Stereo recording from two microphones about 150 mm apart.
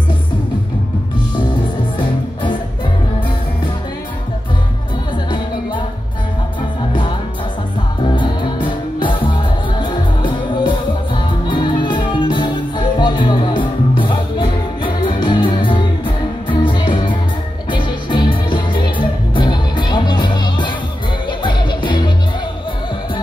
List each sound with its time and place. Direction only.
2.0 s music: 35° left (ahead or behind)
6.9 s music: 30° left (ahead or behind)